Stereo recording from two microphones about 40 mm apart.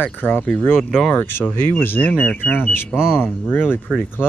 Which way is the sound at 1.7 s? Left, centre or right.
Left.